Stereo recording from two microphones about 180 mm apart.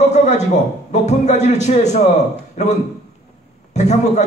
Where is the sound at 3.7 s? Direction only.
40° left (ahead or behind).